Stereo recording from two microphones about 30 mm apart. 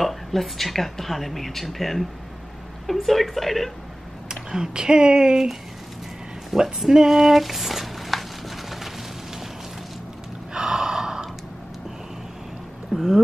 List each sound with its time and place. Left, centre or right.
0.0 s speech: centre
4.3 s speech: right
6.5 s speech: centre
6.9 s a sound: centre
10.5 s gasp: right
12.9 s speech: centre